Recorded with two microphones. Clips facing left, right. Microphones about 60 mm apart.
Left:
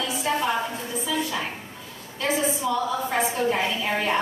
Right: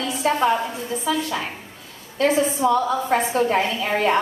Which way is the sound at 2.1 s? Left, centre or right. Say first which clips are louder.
Right 6 dB; right.